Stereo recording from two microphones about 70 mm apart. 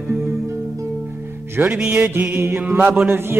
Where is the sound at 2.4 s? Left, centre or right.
Right.